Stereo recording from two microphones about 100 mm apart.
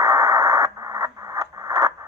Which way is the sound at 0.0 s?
35° right (ahead or behind).